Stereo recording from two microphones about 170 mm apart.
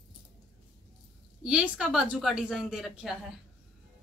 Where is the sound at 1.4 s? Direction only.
5° right (ahead or behind).